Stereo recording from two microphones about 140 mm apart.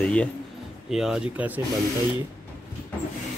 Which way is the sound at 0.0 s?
10° left (ahead or behind).